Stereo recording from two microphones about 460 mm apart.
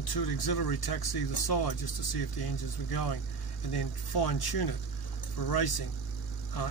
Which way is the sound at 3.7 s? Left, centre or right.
Left.